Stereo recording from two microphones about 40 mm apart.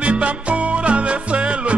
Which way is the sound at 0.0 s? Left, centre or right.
Right.